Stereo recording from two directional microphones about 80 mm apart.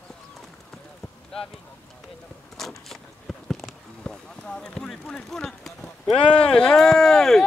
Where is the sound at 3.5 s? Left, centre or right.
Centre.